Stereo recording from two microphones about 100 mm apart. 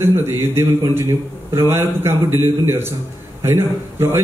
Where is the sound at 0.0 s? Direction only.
25° right (ahead or behind).